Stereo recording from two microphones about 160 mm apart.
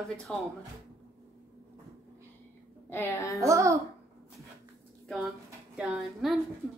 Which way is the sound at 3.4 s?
20° right (ahead or behind).